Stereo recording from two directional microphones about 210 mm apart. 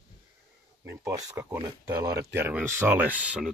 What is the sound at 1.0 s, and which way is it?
Speech, 15° right (ahead or behind).